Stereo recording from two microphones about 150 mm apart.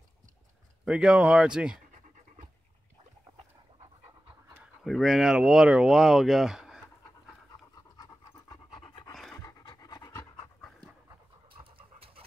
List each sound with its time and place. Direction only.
0.8 s speech: 5° right (ahead or behind)
4.8 s speech: centre (ahead or behind)
8.0 s pant: 25° left (ahead or behind)
9.1 s pant: centre (ahead or behind)
9.4 s pant: 25° left (ahead or behind)